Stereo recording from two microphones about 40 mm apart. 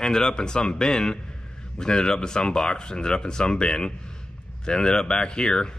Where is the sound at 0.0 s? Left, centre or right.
Centre.